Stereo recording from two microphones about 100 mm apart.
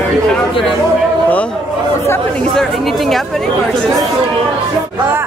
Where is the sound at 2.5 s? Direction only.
Centre (ahead or behind).